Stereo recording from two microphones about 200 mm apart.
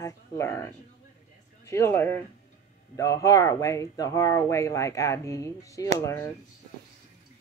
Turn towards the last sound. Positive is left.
turn(degrees=15)  # may be behind; listen again after turning